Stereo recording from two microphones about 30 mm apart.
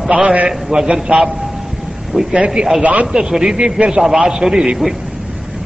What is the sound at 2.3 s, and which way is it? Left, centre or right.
Speech, right.